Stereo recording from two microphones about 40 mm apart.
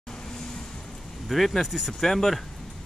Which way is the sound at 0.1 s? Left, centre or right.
Centre.